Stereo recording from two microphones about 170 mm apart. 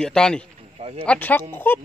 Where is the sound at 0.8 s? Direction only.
35° right (ahead or behind).